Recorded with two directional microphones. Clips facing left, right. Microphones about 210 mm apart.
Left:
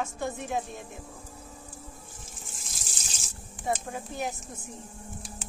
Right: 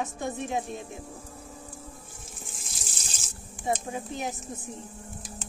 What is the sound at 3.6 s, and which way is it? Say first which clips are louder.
Speech: right 2 dB; 20° right (ahead or behind).